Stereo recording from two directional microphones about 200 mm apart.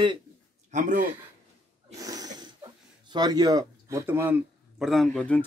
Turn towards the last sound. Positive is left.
turn(degrees=5)  # may be behind; listen again after turning